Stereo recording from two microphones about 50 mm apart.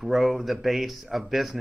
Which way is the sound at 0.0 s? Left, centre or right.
Centre.